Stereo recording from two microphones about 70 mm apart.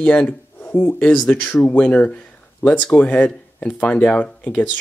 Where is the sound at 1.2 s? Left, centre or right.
Left.